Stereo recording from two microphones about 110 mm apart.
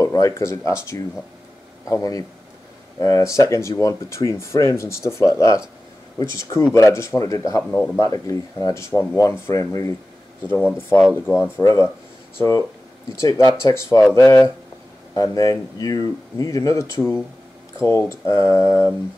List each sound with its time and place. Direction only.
0.0 s speech: 30° left (ahead or behind)
11.0 s speech: centre (ahead or behind)
11.6 s speech: 30° left (ahead or behind)